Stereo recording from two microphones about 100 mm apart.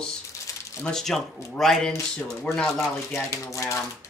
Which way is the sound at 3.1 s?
30° left (ahead or behind).